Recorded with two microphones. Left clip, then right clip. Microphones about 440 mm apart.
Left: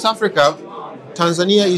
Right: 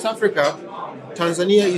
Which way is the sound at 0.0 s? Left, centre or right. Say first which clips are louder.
Left 4 dB; left.